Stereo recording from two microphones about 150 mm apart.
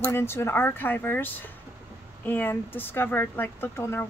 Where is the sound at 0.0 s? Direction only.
15° left (ahead or behind).